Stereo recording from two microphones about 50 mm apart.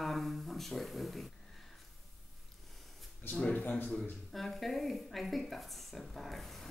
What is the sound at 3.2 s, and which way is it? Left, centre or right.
Speech, left.